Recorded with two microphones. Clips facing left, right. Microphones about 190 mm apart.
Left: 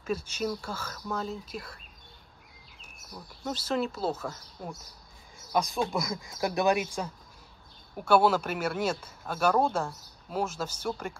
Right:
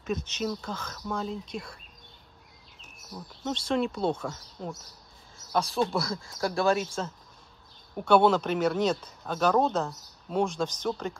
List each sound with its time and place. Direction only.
0.1 s speech: 10° left (ahead or behind)
3.4 s speech: 5° left (ahead or behind)